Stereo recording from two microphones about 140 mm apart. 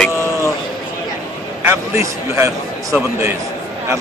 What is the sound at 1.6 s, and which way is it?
A man's voice, 20° right (ahead or behind).